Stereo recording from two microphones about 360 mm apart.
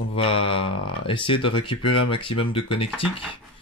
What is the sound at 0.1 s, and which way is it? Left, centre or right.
Mantra, centre.